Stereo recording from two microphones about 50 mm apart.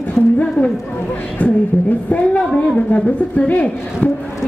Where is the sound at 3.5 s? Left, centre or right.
Left.